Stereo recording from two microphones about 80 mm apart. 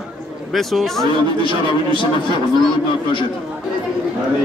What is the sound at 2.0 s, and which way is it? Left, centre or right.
Speech, left.